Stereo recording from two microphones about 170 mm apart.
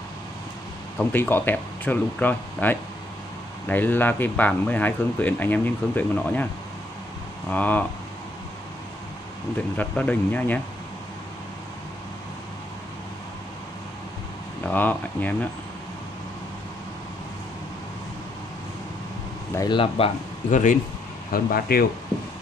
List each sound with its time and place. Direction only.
0.9 s speech: 10° left (ahead or behind)
7.4 s speech: 10° left (ahead or behind)
9.8 s speech: 10° left (ahead or behind)
14.7 s speech: 10° left (ahead or behind)
19.5 s speech: 25° left (ahead or behind)
20.4 s speech: 45° left (ahead or behind)
21.3 s speech: 60° left (ahead or behind)